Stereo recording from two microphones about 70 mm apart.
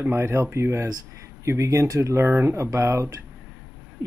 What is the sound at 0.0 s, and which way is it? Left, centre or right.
Speech, right.